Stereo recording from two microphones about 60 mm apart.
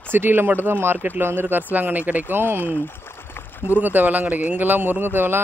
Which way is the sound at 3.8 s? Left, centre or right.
Right.